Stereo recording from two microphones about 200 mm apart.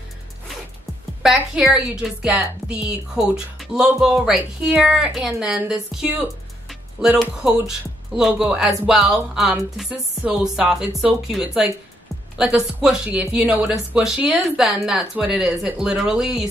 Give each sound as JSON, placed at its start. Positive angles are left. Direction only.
{"t": 1.2, "sound": "a woman's voice", "side_deg": 0}